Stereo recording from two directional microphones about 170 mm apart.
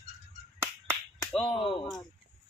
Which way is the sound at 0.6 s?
5° left (ahead or behind).